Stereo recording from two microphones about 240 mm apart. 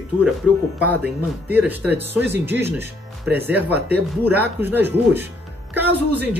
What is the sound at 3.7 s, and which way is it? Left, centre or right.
Speech, right.